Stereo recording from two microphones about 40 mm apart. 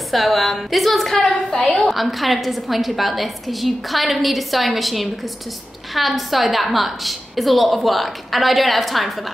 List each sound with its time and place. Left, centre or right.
0.1 s a woman's voice: centre
1.5 s a woman's voice: left
1.8 s a woman's voice: centre